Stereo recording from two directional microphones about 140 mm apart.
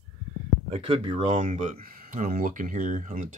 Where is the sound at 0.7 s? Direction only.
45° right (ahead or behind).